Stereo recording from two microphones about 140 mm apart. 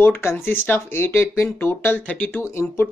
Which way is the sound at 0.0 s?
15° left (ahead or behind).